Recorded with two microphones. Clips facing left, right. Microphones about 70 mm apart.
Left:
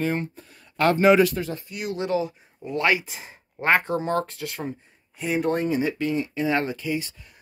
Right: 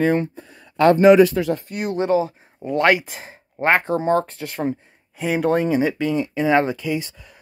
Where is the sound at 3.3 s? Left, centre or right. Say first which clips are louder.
Right 3 dB; right.